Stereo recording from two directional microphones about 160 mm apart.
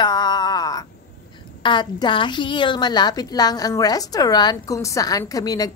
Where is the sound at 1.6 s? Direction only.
30° left (ahead or behind).